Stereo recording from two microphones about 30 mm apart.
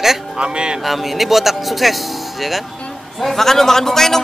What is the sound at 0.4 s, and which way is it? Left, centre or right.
Speech, right.